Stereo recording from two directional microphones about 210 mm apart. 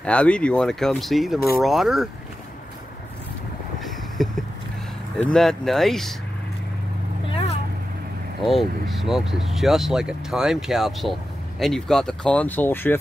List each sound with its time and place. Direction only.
0.0 s speech: 5° left (ahead or behind)
3.8 s a sound: centre (ahead or behind)
5.1 s speech: 5° left (ahead or behind)
7.2 s vehicle: 30° left (ahead or behind)
8.5 s speech: centre (ahead or behind)